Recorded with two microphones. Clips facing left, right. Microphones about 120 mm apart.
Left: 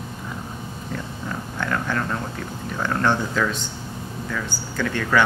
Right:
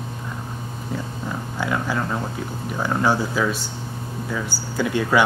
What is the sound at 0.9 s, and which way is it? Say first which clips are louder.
Speech: right 2 dB; 10° right (ahead or behind).